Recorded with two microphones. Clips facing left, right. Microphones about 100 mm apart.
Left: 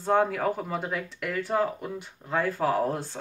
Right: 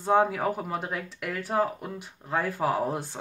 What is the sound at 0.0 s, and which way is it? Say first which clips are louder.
Speech: right 1 dB; 10° right (ahead or behind).